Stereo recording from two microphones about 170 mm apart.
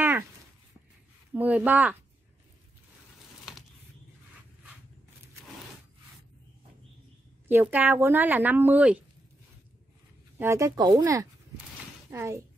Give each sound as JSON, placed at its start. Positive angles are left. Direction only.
{"t": 1.3, "sound": "speech", "side_deg": -10}
{"t": 7.4, "sound": "speech", "side_deg": -10}
{"t": 10.4, "sound": "speech", "side_deg": -15}